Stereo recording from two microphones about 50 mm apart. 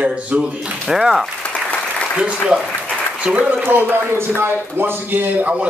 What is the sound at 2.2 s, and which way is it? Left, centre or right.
A man's voice, right.